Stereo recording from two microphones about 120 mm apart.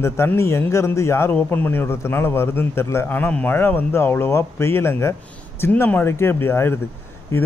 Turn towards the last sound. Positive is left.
turn(degrees=20)  # may be behind; listen again after turning